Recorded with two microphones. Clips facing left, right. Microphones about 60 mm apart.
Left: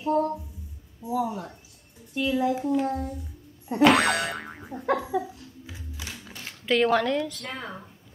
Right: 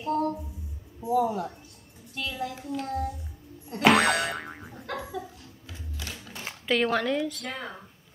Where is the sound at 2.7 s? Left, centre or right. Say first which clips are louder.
Left 7 dB; left.